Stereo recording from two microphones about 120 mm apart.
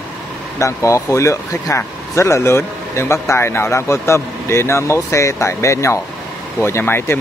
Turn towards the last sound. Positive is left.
turn(degrees=20)  # may be behind; listen again after turning